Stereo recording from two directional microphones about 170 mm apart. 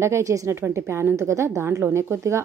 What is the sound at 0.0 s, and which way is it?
A woman's voice, 15° right (ahead or behind).